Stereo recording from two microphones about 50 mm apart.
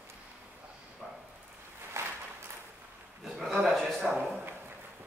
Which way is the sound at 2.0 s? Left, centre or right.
Right.